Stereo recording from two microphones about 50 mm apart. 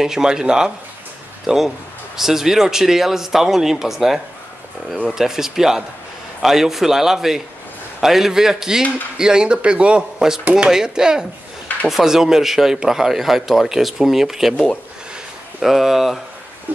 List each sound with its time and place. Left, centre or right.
0.0 s a man's voice: centre
15.6 s speech: centre